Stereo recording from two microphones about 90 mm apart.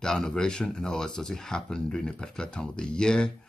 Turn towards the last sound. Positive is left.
turn(degrees=10)  # may be behind; listen again after turning